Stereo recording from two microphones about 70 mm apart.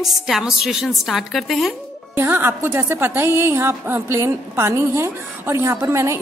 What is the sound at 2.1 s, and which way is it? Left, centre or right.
A woman's voice, right.